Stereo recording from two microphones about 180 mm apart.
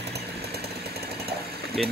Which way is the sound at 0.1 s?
60° right (ahead or behind).